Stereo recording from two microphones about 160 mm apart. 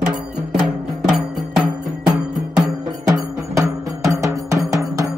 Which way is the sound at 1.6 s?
5° right (ahead or behind).